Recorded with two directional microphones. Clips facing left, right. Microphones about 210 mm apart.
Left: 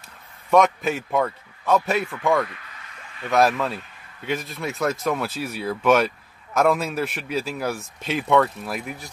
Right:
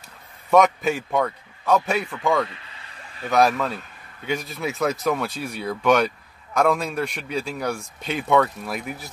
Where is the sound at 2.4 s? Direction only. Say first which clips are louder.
Right 1 dB; 25° right (ahead or behind).